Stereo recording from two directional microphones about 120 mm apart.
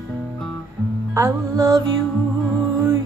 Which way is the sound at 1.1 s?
25° right (ahead or behind).